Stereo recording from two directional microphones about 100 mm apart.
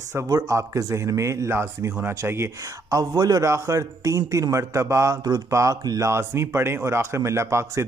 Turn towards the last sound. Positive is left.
turn(degrees=-25)  # may be behind; listen again after turning